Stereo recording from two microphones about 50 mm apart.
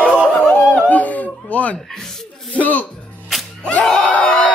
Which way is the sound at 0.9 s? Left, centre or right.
Left.